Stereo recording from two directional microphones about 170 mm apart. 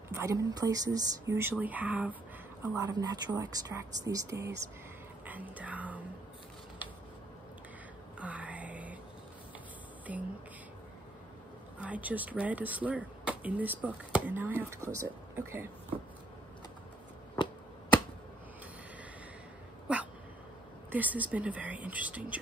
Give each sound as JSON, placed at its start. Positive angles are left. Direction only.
{"t": 0.1, "sound": "speech", "side_deg": -20}
{"t": 5.2, "sound": "whispering", "side_deg": -10}
{"t": 8.2, "sound": "whispering", "side_deg": -10}
{"t": 10.1, "sound": "a sound", "side_deg": -10}
{"t": 11.8, "sound": "speech", "side_deg": -10}
{"t": 19.9, "sound": "dog", "side_deg": -5}
{"t": 20.9, "sound": "speech", "side_deg": -10}